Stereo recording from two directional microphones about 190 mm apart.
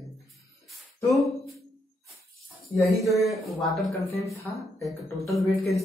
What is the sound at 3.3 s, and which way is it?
Speech, centre (ahead or behind).